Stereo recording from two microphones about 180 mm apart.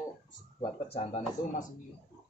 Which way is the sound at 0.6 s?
30° left (ahead or behind).